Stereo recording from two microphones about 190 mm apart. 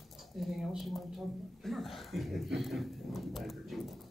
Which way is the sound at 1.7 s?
Centre (ahead or behind).